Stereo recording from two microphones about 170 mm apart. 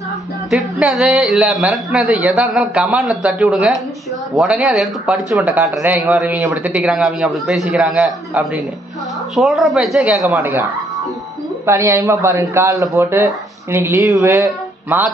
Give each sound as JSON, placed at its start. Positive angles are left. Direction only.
{"t": 0.5, "sound": "a man's voice", "side_deg": 0}
{"t": 10.2, "sound": "a man's voice", "side_deg": -15}